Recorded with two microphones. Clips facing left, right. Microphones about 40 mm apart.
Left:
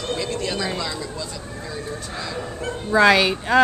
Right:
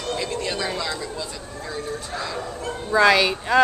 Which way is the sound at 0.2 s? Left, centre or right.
Centre.